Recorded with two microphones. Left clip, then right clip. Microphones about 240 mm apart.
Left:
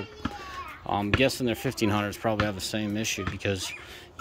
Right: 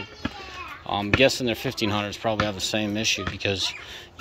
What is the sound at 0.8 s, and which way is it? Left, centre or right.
A child's voice, centre.